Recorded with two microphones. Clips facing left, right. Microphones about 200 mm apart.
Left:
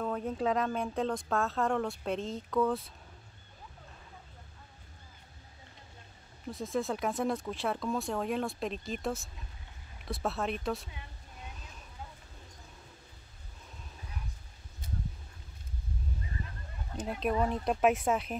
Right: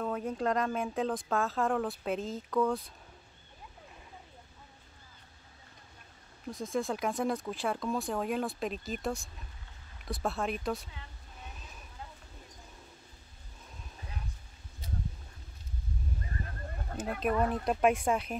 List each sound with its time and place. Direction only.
0.0 s speech: centre (ahead or behind)
6.4 s speech: centre (ahead or behind)
16.4 s a sound: 50° right (ahead or behind)
17.2 s speech: centre (ahead or behind)